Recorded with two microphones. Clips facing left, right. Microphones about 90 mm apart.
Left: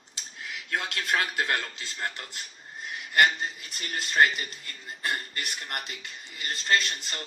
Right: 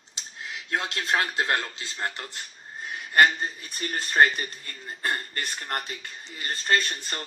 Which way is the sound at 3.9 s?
40° right (ahead or behind).